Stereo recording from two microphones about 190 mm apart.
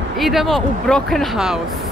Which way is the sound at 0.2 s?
Centre (ahead or behind).